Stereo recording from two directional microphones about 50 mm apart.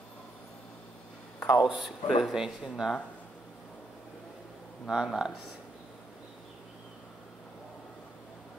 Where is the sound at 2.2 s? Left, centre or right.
Centre.